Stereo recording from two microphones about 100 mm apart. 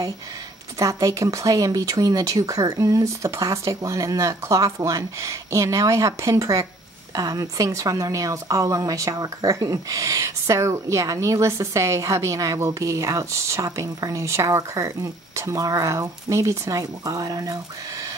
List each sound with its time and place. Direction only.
0.7 s a woman's voice: 35° right (ahead or behind)